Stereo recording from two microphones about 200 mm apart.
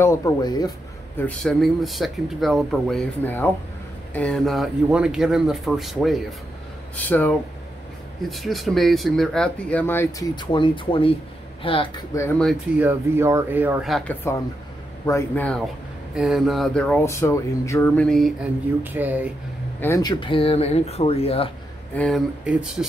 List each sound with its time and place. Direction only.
0.0 s speech: 15° left (ahead or behind)
1.2 s speech: 5° left (ahead or behind)
10.3 s speech: 25° left (ahead or behind)
12.4 s speech: centre (ahead or behind)
12.8 s speech: 10° right (ahead or behind)
15.0 s speech: 10° left (ahead or behind); by 19.3 s 10° right (ahead or behind)
19.8 s speech: 15° left (ahead or behind)
21.9 s speech: 5° left (ahead or behind)